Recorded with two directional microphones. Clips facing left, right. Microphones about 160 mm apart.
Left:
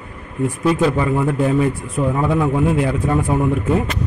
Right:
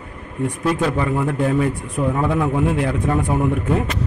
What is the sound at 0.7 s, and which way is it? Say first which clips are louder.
A man's voice: left 3 dB; 5° left (ahead or behind).